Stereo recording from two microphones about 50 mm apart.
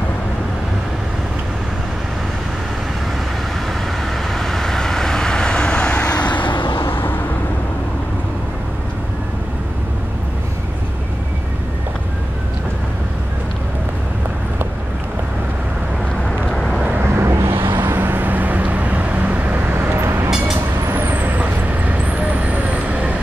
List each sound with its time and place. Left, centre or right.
4.3 s vehicle: centre; by 6.4 s left
6.9 s vehicle: left
16.4 s vehicle: centre
17.0 s vehicle: right
17.7 s vehicle: right
19.7 s vehicle: right